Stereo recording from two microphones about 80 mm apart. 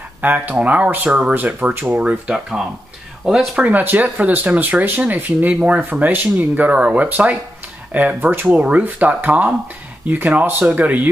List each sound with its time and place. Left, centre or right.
0.2 s speech: right; by 3.6 s centre
3.6 s speech: right